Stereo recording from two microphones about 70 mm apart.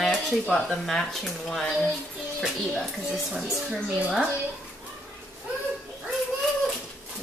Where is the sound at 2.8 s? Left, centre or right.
Centre.